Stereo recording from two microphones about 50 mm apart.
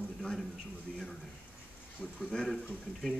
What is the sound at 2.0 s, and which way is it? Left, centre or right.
Speech, centre.